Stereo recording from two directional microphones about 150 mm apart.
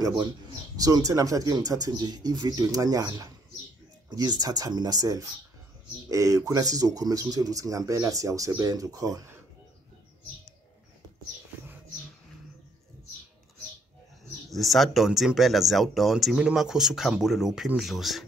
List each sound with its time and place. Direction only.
0.7 s speech: 25° right (ahead or behind)
14.5 s speech: centre (ahead or behind)